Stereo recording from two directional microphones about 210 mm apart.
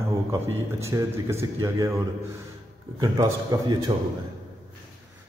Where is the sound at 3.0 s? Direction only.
15° right (ahead or behind).